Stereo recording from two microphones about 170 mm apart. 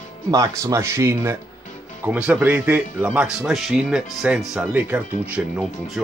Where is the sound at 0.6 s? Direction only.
15° right (ahead or behind); by 5.9 s centre (ahead or behind).